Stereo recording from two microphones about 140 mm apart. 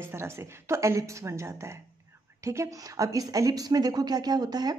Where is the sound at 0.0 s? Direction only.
20° right (ahead or behind).